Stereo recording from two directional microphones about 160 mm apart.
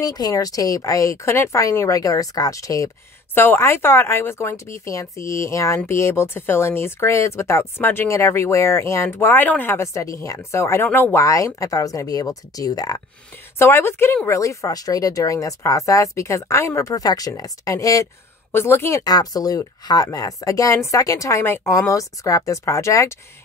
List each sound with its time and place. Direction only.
0.0 s speech: 25° left (ahead or behind)